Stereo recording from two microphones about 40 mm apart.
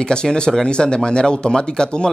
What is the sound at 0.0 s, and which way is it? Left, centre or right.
Speech, centre.